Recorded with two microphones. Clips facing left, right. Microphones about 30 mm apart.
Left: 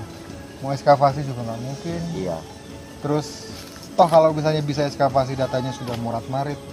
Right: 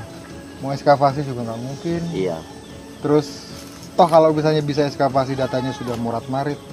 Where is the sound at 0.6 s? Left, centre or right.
Centre.